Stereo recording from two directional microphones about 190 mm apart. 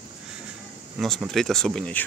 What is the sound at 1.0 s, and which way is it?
Speech, centre (ahead or behind).